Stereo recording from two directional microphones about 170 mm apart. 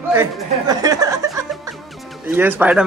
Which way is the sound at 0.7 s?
20° right (ahead or behind).